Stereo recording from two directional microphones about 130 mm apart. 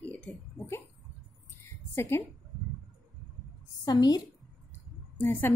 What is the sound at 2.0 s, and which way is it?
Speech, 20° left (ahead or behind).